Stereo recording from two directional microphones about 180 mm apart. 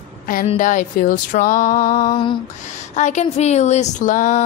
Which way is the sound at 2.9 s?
40° left (ahead or behind).